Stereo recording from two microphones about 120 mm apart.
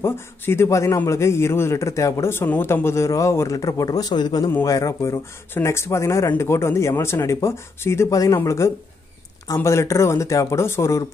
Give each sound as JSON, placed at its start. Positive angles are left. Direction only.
{"t": 0.0, "sound": "a man's voice", "side_deg": 20}